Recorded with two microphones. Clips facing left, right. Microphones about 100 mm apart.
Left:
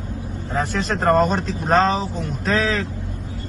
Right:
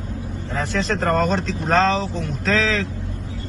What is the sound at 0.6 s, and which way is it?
Speech, 45° left (ahead or behind).